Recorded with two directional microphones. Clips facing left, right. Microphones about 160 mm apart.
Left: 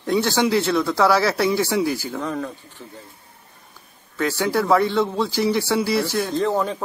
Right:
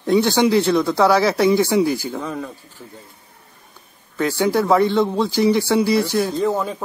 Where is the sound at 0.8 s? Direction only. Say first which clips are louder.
Right 2 dB; 15° right (ahead or behind).